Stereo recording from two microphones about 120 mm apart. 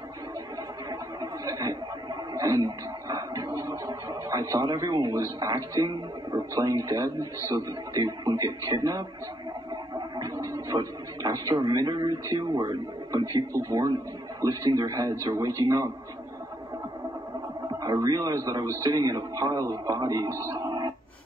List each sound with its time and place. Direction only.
0.8 s a sound: 30° right (ahead or behind)
9.9 s gargling: 35° right (ahead or behind)
10.3 s a man's voice: 30° right (ahead or behind)
17.8 s a man's voice: 30° right (ahead or behind)